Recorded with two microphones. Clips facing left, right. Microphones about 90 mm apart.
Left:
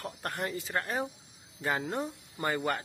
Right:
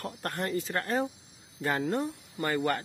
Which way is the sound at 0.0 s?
5° left (ahead or behind).